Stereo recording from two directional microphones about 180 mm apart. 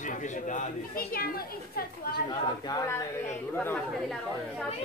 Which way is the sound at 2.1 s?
25° left (ahead or behind).